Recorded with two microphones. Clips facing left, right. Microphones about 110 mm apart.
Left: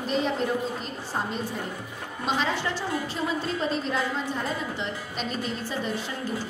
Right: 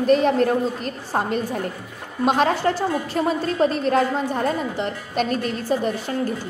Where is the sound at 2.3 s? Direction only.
55° right (ahead or behind).